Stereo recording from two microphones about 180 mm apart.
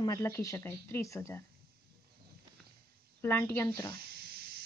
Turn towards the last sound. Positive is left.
turn(degrees=15)  # may be behind; listen again after turning